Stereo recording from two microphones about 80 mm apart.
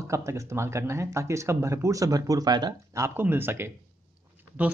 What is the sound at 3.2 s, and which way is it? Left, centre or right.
Speech, right.